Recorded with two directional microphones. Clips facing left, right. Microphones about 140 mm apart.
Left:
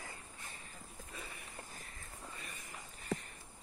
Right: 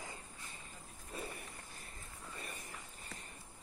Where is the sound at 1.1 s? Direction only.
45° right (ahead or behind).